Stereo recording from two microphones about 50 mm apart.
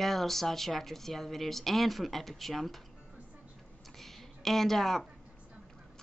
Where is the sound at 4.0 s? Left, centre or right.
Centre.